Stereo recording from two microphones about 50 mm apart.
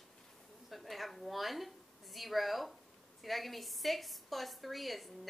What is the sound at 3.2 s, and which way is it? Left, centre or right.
A woman's voice, centre.